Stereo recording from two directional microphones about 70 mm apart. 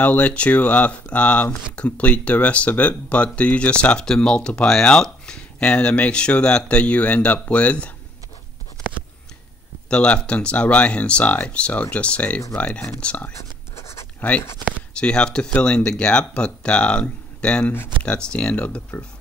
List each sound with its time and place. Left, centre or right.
0.0 s speech: centre
9.8 s speech: centre
13.4 s writing: left
14.6 s speech: centre